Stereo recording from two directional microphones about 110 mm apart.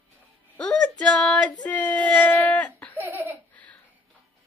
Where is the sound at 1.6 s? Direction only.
15° left (ahead or behind).